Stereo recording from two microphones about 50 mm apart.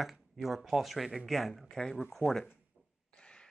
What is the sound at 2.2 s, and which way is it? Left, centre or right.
Speech, centre.